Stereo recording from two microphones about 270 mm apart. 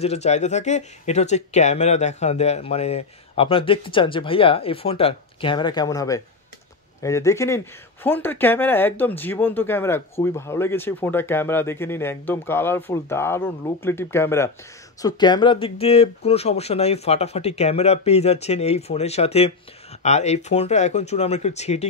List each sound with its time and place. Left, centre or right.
0.0 s speech: left